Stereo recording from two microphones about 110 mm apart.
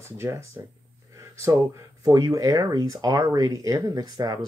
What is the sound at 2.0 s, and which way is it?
Speech, 35° right (ahead or behind).